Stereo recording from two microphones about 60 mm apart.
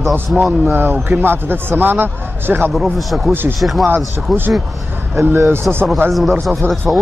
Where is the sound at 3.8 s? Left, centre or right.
Right.